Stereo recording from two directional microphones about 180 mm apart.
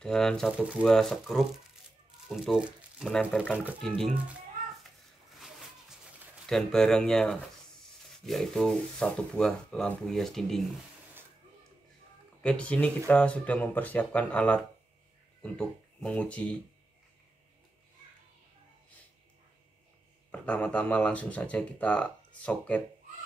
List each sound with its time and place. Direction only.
0.0 s speech: 5° left (ahead or behind)
6.4 s speech: 5° left (ahead or behind)
12.4 s speech: 5° left (ahead or behind)
20.2 s speech: 5° left (ahead or behind)